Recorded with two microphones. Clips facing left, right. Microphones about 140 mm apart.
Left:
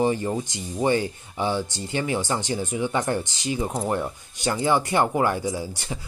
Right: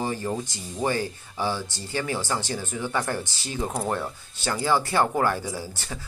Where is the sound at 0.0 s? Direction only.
20° left (ahead or behind).